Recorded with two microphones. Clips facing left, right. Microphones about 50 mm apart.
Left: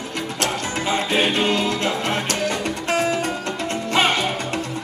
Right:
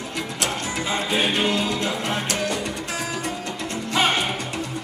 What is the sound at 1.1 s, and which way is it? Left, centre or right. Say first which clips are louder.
Music: left 2 dB; left.